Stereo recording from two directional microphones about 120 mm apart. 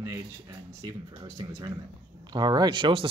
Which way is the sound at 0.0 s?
25° right (ahead or behind).